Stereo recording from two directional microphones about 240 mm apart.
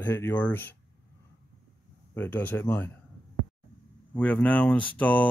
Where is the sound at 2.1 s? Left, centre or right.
Centre.